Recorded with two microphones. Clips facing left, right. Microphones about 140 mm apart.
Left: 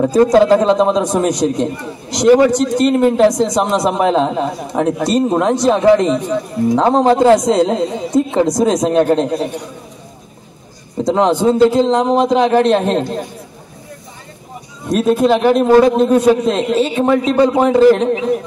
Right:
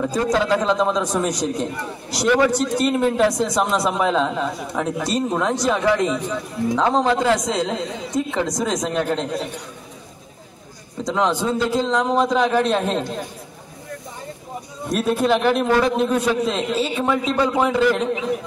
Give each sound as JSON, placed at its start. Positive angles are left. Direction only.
{"t": 0.0, "sound": "a man's voice", "side_deg": 35}
{"t": 2.2, "sound": "a man's voice", "side_deg": 35}
{"t": 11.1, "sound": "a man's voice", "side_deg": 35}
{"t": 14.9, "sound": "a man's voice", "side_deg": 40}